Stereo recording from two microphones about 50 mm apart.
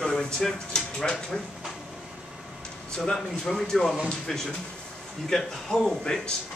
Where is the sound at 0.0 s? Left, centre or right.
Centre.